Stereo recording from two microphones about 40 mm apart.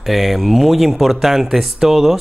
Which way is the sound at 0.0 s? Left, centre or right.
Centre.